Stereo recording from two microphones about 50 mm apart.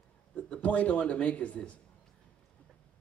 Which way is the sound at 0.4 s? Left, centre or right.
Left.